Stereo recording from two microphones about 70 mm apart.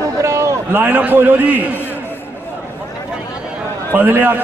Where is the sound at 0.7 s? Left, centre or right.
Right.